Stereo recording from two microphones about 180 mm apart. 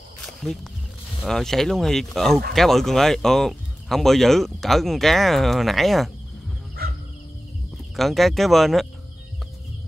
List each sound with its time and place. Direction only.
1.2 s speech: centre (ahead or behind)
6.8 s bow-wow: 55° right (ahead or behind)
7.9 s speech: centre (ahead or behind)